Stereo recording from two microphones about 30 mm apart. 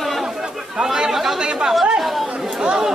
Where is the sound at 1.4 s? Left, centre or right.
Right.